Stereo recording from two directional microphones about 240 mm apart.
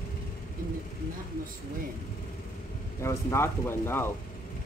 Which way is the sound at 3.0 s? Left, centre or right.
Centre.